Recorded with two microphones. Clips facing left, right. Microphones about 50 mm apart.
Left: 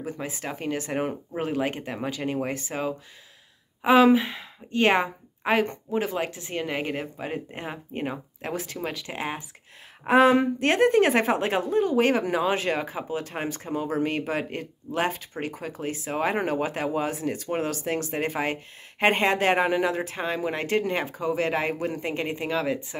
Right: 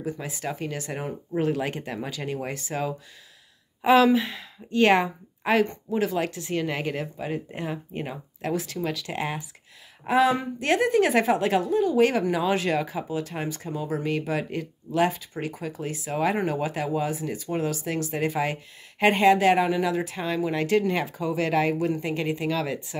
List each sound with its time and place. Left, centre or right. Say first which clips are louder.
0.0 s speech: right 1 dB; left
3.8 s speech: left 1 dB; left
10.0 s speech: left 3 dB; left